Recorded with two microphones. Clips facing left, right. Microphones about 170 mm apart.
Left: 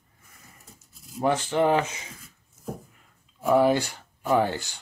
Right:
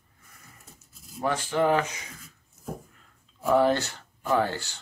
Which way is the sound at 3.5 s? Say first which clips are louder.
Left 2 dB; 10° left (ahead or behind).